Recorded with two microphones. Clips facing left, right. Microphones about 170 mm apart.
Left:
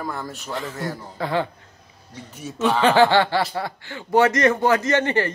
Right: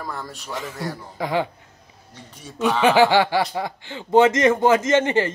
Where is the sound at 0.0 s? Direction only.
Centre (ahead or behind).